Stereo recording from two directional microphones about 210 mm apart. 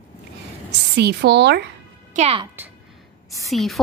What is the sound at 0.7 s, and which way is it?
Speech, 55° right (ahead or behind).